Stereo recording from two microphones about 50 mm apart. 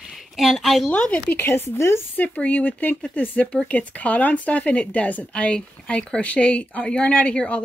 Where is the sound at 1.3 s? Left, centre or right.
Left.